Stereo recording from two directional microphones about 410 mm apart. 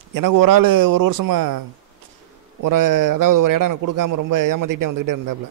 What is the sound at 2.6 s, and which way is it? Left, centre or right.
A man's voice, right.